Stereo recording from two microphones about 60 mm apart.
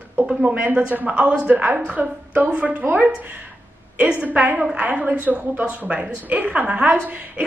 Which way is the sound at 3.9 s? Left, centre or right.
Right.